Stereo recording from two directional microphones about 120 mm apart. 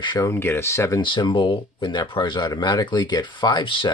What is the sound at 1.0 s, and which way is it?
Speech, 40° left (ahead or behind).